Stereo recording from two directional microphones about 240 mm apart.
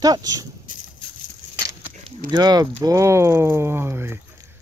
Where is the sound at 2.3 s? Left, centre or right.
Centre.